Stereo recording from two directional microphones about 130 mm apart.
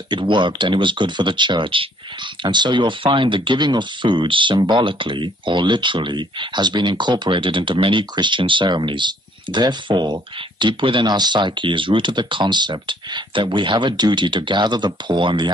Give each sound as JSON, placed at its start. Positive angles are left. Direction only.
{"t": 0.1, "sound": "speech", "side_deg": -35}